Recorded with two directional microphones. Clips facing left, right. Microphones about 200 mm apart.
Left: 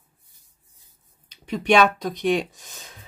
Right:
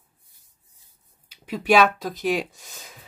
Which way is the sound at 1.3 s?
5° right (ahead or behind).